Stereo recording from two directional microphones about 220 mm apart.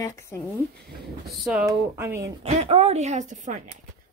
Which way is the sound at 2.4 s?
25° right (ahead or behind).